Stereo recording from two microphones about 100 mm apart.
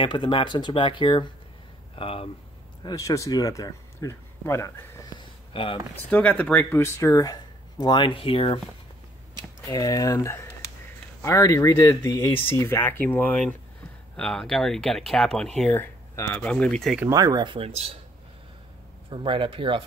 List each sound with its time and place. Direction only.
0.0 s speech: 55° left (ahead or behind)
2.0 s speech: 70° left (ahead or behind)
2.8 s speech: 35° left (ahead or behind)
5.5 s speech: 60° left (ahead or behind)
6.0 s speech: 15° left (ahead or behind); by 8.5 s 65° left (ahead or behind)
9.7 s speech: 40° left (ahead or behind)
12.4 s speech: 25° left (ahead or behind)
14.1 s speech: 5° left (ahead or behind)
17.1 s speech: 40° right (ahead or behind)
17.6 s speech: 75° right (ahead or behind)
19.0 s speech: 55° right (ahead or behind)